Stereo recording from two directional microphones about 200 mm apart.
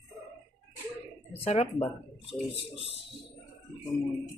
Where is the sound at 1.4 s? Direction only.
30° left (ahead or behind).